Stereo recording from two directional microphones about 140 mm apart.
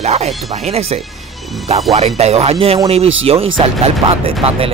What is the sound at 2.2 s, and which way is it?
Speech, 50° right (ahead or behind).